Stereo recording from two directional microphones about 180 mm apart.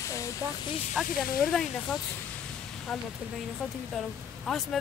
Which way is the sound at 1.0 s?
Centre (ahead or behind).